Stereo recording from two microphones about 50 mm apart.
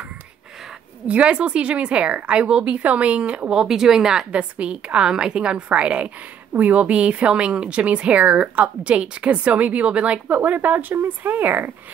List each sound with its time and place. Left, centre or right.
1.0 s a woman's voice: right
3.5 s speech: centre
4.3 s a woman's voice: right
10.3 s speech: right